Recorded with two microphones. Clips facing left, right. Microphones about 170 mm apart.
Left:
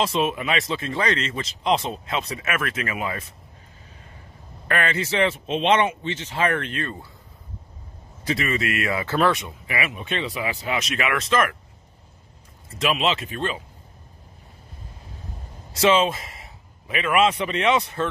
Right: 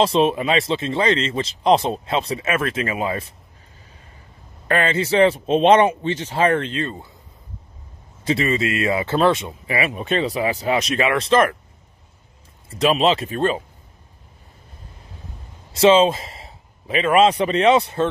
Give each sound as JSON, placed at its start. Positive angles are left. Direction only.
{"t": 0.0, "sound": "speech", "side_deg": -30}
{"t": 4.6, "sound": "speech", "side_deg": -25}
{"t": 8.2, "sound": "speech", "side_deg": -25}
{"t": 12.6, "sound": "speech", "side_deg": -35}
{"t": 15.7, "sound": "a man's voice", "side_deg": -30}